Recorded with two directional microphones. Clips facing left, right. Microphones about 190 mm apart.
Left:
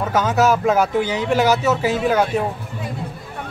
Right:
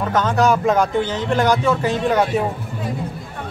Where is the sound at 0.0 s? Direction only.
5° left (ahead or behind).